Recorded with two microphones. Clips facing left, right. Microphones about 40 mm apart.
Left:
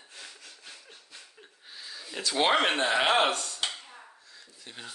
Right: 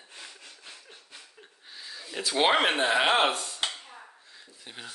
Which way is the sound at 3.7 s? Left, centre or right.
Centre.